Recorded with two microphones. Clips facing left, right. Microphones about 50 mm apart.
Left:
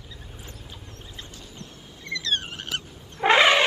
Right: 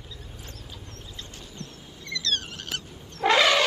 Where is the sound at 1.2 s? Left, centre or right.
Left.